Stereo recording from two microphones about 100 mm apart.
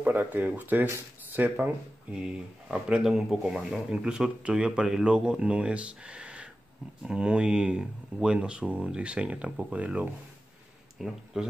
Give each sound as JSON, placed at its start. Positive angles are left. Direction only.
{"t": 0.0, "sound": "speech", "side_deg": -15}
{"t": 2.7, "sound": "speech", "side_deg": -5}